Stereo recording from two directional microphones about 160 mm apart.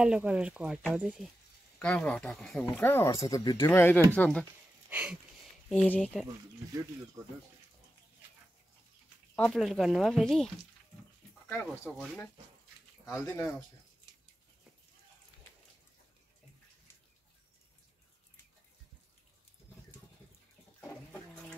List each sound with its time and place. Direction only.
0.0 s speech: 5° right (ahead or behind)
1.8 s speech: 5° left (ahead or behind)
4.8 s a sound: 10° right (ahead or behind)
9.3 s speech: 5° left (ahead or behind)
11.8 s speech: centre (ahead or behind)
13.0 s speech: 15° left (ahead or behind)